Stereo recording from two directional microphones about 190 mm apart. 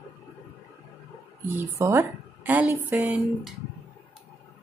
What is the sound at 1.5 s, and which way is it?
A woman's voice, 10° right (ahead or behind).